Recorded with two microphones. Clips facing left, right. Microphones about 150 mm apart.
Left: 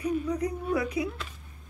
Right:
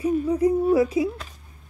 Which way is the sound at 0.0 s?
30° right (ahead or behind).